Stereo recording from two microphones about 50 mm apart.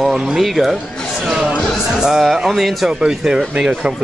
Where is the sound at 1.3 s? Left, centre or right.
Centre.